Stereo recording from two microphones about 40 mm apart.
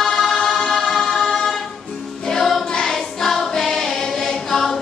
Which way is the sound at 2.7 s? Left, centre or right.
Centre.